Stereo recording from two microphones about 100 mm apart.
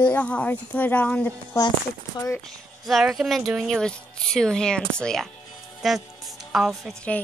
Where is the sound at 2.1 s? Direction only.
30° left (ahead or behind).